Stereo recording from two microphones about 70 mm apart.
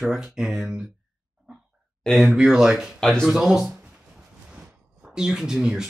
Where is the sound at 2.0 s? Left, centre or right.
Centre.